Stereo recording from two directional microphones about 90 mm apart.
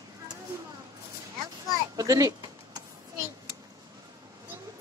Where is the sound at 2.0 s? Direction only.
40° right (ahead or behind).